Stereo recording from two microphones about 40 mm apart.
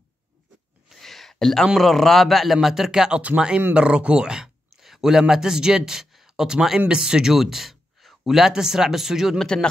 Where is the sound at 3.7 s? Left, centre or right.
Right.